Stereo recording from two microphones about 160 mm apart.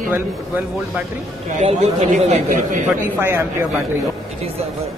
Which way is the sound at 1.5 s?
45° right (ahead or behind).